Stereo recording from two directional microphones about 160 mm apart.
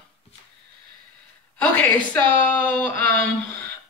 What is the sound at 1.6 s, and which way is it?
Speech, 10° left (ahead or behind).